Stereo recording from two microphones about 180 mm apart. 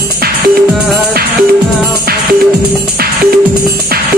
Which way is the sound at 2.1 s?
60° right (ahead or behind).